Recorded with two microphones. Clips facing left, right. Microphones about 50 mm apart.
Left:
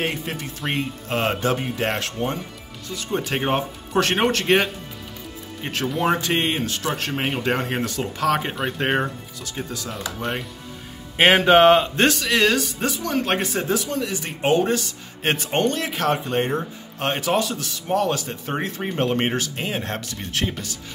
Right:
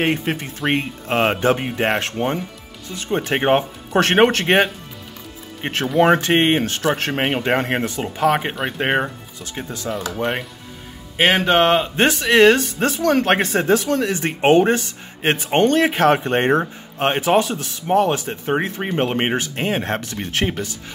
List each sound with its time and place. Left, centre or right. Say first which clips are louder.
0.0 s speech: right 6 dB; right
7.8 s speech: right 4 dB; right
8.5 s speech: right 2 dB; centre; by 9.8 s right
11.1 s speech: left 1 dB; centre
12.0 s speech: right 5 dB; right
15.2 s speech: right 3 dB; centre
15.7 s speech: right 8 dB; right
17.0 s speech: right 5 dB; right